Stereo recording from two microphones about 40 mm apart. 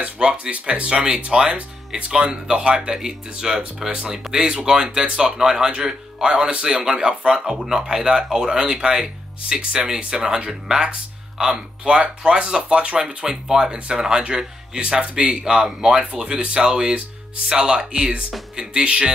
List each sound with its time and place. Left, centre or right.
0.0 s speech: right
3.0 s speech: centre
9.6 s speech: right